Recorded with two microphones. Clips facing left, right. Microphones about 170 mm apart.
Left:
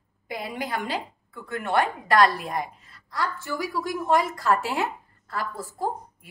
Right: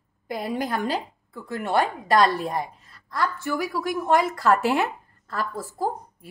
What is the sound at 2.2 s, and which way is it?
Speech, 30° right (ahead or behind).